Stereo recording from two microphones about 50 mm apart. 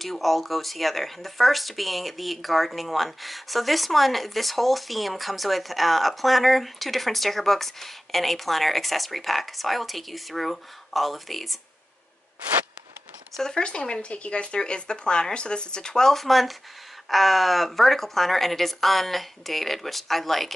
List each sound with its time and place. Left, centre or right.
0.0 s speech: centre
13.4 s speech: centre